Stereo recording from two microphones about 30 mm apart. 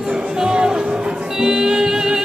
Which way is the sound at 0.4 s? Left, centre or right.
Right.